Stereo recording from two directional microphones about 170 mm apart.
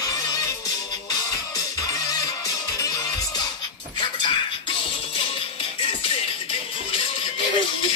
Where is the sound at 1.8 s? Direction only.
20° left (ahead or behind).